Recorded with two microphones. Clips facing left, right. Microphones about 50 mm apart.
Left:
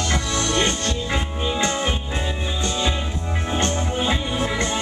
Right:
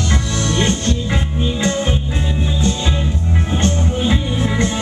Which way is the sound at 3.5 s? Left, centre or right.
Centre.